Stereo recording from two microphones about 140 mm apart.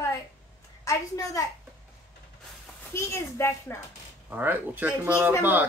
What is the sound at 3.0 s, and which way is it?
Speech, 20° left (ahead or behind).